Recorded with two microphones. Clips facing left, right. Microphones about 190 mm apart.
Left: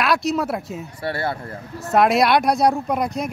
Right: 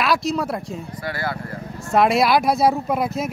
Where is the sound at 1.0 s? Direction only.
25° left (ahead or behind).